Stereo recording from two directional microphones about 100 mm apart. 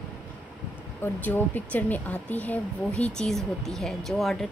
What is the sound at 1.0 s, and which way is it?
Speech, 20° left (ahead or behind).